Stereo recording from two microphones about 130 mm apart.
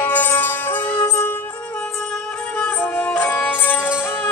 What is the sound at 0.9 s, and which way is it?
Music, 30° left (ahead or behind).